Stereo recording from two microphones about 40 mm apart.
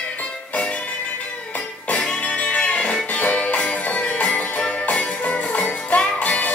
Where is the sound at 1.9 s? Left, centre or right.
Left.